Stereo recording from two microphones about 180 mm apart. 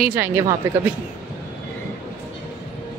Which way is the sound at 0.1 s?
15° right (ahead or behind).